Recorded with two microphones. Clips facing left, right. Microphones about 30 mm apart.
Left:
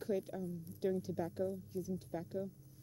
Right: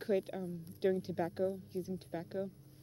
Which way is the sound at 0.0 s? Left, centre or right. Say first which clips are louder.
Right 4 dB; right.